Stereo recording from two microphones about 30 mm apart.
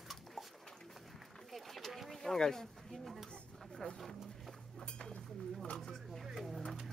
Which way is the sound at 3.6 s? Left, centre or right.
Centre.